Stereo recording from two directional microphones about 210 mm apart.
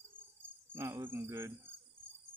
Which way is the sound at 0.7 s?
10° right (ahead or behind).